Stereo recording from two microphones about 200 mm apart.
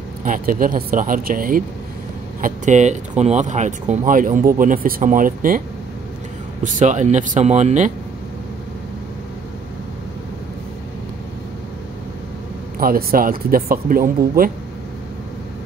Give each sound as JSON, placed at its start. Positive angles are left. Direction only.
{"t": 0.2, "sound": "speech", "side_deg": -45}
{"t": 6.6, "sound": "speech", "side_deg": -40}
{"t": 12.7, "sound": "speech", "side_deg": -45}